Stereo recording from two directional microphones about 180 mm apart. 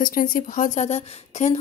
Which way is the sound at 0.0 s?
50° left (ahead or behind).